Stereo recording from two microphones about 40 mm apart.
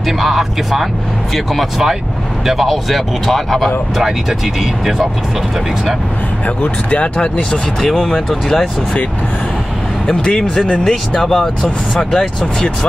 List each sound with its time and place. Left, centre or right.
0.2 s speech: centre
6.4 s speech: left
7.8 s speech: centre
10.2 s speech: left
11.1 s speech: centre
11.9 s speech: centre